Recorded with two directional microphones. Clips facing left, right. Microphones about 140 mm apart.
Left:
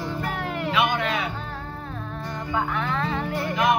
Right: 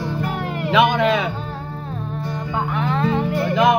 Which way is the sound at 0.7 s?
90° right.